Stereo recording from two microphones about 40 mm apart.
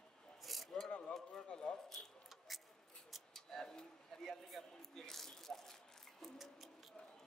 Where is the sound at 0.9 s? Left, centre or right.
Left.